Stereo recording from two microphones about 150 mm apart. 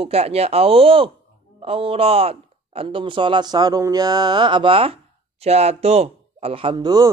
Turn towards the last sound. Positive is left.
turn(degrees=-30)  # may be behind; listen again after turning